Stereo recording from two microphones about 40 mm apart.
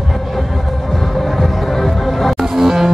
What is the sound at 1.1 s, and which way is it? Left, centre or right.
Music, centre.